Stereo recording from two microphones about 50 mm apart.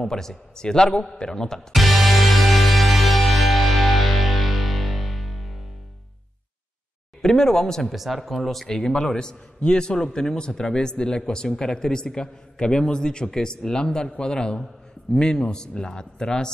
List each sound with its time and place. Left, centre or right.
0.0 s a man's voice: centre
1.7 s music: centre
7.2 s a man's voice: centre
7.9 s speech: centre
8.6 s a man's voice: centre